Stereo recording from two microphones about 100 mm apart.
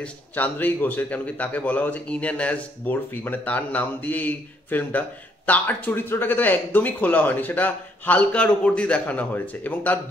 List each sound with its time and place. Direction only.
0.0 s a man's voice: 15° left (ahead or behind)